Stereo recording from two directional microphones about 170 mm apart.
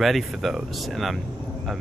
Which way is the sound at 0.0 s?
Centre (ahead or behind).